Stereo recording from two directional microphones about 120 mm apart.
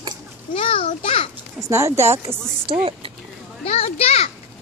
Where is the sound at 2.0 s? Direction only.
50° right (ahead or behind).